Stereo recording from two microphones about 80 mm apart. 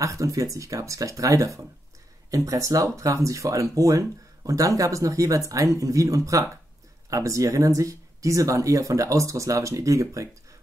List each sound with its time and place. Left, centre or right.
0.0 s speech: right